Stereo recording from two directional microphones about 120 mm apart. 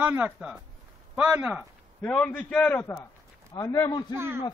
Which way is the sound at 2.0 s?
10° left (ahead or behind).